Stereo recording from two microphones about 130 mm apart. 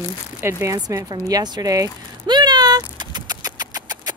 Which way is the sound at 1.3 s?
30° right (ahead or behind).